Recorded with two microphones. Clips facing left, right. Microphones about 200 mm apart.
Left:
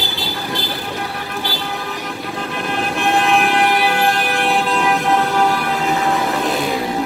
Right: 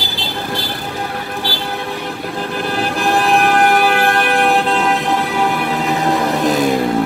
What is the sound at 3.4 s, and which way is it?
Vehicle, 45° right (ahead or behind).